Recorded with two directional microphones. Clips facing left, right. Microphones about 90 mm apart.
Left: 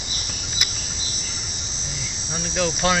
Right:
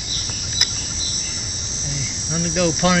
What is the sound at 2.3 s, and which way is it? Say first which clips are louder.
Speech: right 4 dB; 5° right (ahead or behind).